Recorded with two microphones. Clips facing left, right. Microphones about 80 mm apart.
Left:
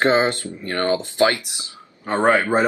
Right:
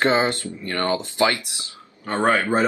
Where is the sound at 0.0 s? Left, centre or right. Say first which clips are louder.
Left 2 dB; left.